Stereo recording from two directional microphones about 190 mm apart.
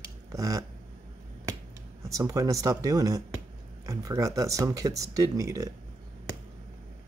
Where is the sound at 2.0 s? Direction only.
15° right (ahead or behind).